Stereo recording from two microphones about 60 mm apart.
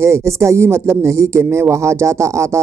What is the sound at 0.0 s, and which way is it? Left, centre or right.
Speech, right.